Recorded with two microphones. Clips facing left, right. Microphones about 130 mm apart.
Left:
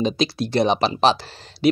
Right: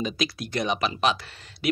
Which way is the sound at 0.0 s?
30° left (ahead or behind).